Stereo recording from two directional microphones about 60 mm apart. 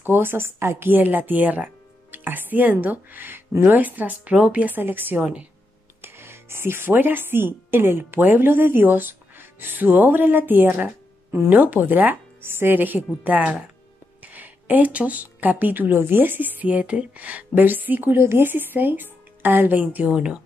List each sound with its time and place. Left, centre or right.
0.0 s speech: right
5.9 s a woman's voice: right